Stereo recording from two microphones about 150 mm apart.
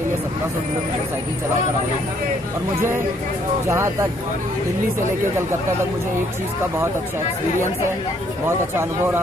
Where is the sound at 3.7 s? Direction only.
20° right (ahead or behind).